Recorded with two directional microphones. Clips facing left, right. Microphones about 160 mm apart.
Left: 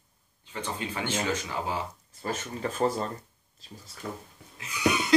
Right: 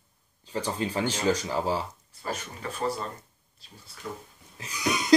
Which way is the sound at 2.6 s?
35° left (ahead or behind).